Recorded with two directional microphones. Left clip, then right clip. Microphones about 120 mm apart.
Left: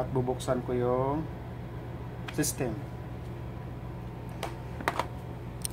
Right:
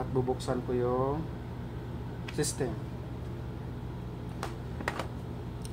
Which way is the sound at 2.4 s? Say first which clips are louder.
Left 1 dB; 75° left (ahead or behind).